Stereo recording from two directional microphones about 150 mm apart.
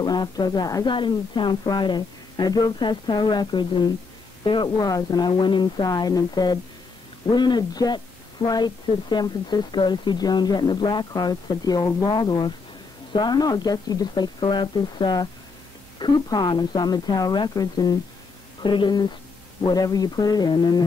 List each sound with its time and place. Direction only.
0.0 s speech: 30° left (ahead or behind)